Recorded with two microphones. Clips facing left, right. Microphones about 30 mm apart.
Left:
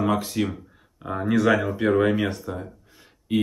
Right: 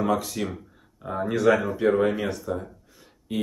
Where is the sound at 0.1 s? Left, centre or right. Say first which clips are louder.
Left 2 dB; centre.